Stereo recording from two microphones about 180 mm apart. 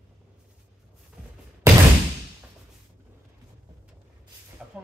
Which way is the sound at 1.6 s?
15° right (ahead or behind).